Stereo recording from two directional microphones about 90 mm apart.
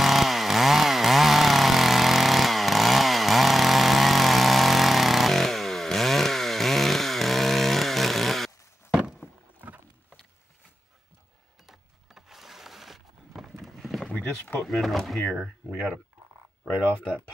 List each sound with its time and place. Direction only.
0.0 s chainsaw: centre (ahead or behind)
8.9 s vehicle: 5° right (ahead or behind)
11.6 s a sound: 5° right (ahead or behind)
14.1 s a sound: 20° left (ahead or behind)
14.6 s speech: centre (ahead or behind)
15.4 s speech: 10° right (ahead or behind)